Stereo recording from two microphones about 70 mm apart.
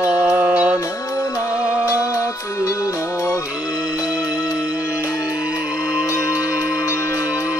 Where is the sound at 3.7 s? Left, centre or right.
Centre.